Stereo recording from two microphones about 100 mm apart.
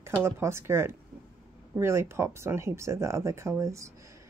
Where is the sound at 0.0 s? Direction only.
25° right (ahead or behind).